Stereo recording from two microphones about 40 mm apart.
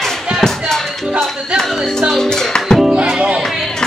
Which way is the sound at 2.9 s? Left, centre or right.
Right.